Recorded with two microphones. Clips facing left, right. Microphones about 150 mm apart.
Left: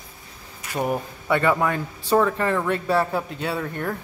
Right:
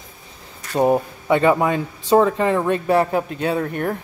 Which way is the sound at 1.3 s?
20° right (ahead or behind).